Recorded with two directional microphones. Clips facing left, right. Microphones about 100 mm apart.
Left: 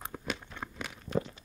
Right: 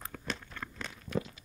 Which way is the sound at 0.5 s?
15° left (ahead or behind).